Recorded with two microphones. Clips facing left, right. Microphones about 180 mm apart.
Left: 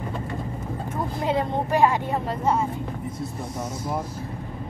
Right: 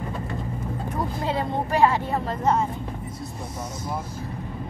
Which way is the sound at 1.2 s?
20° left (ahead or behind).